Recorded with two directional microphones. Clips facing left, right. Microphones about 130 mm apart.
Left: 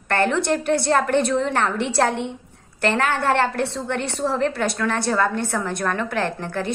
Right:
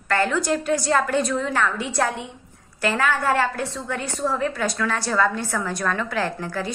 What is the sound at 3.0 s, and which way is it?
A woman's voice, 65° left (ahead or behind).